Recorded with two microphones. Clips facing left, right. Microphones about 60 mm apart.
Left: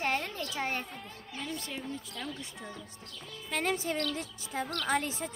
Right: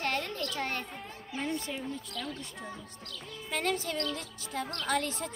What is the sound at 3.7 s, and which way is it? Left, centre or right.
Speech, centre.